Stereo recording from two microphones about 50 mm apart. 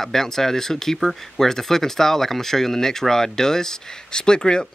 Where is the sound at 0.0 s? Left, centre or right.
Centre.